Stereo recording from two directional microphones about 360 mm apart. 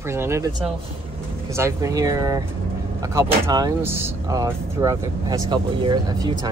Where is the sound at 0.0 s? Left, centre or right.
Centre.